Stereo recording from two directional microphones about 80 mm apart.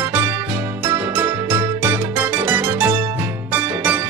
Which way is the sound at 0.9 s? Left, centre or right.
Right.